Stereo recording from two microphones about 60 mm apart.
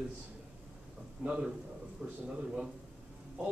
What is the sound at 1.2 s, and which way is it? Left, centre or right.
Speech, centre.